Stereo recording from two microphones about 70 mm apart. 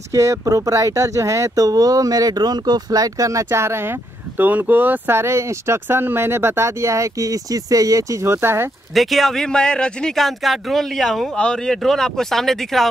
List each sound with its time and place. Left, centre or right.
0.1 s speech: right
8.9 s speech: centre